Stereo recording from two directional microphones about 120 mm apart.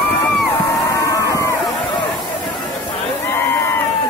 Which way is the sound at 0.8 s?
25° left (ahead or behind).